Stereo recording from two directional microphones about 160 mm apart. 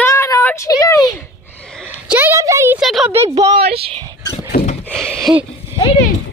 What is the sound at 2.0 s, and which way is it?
Speech, 10° right (ahead or behind).